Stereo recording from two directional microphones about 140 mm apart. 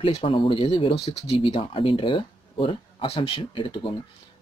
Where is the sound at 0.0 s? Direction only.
40° left (ahead or behind).